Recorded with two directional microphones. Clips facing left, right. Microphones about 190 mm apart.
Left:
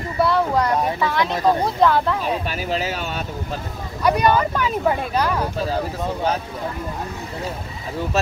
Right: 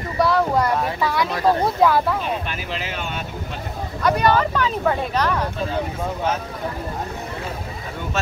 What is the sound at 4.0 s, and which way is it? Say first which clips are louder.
Speech: left 1 dB; 10° left (ahead or behind).